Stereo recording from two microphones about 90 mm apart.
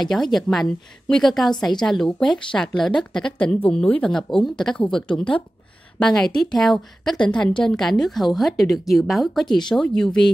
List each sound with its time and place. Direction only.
0.0 s a woman's voice: 5° left (ahead or behind)
7.2 s a woman's voice: 15° left (ahead or behind)